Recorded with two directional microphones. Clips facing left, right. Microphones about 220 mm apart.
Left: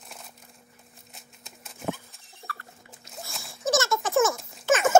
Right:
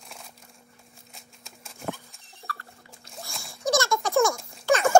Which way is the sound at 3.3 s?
Centre (ahead or behind).